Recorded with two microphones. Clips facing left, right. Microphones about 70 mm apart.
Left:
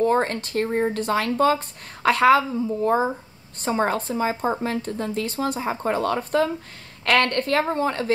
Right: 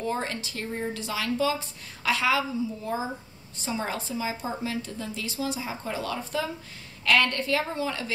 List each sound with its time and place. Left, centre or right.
0.0 s speech: left